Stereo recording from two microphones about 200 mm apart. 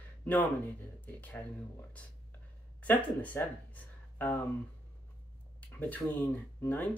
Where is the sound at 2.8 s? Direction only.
10° left (ahead or behind).